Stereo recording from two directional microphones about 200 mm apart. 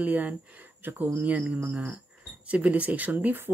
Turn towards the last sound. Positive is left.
turn(degrees=-10)  # may be behind; listen again after turning